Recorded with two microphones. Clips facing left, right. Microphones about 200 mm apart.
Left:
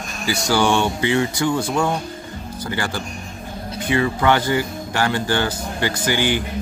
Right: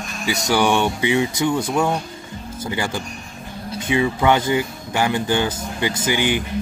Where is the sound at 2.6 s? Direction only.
20° right (ahead or behind).